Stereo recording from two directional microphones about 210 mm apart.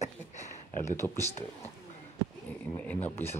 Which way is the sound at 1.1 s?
30° left (ahead or behind).